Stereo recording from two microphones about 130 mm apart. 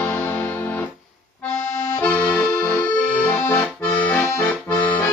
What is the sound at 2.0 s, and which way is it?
Accordion, 10° left (ahead or behind).